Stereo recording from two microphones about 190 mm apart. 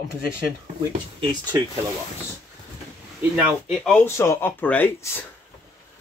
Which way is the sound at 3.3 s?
Centre (ahead or behind).